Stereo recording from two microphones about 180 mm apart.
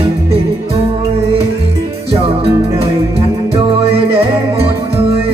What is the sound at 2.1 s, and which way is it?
Music, 30° right (ahead or behind).